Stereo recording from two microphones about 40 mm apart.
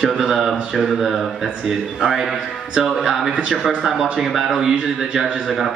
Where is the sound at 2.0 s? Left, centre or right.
Centre.